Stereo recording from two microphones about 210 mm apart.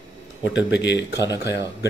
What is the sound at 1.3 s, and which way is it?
Speech, 15° right (ahead or behind).